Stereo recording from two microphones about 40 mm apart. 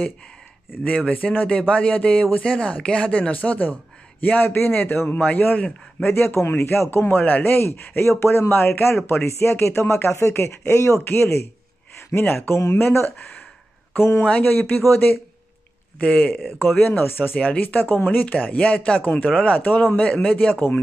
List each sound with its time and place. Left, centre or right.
0.8 s speech: left
5.1 s a man's voice: left
6.0 s speech: left
7.6 s speech: left
12.1 s speech: left
13.9 s speech: left
14.4 s speech: left
14.8 s speech: left
16.0 s speech: left
16.4 s speech: left
17.4 s speech: left
19.6 s a man's voice: left
20.0 s speech: left